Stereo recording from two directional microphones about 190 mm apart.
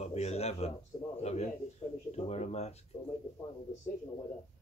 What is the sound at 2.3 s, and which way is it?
Speech, 35° left (ahead or behind).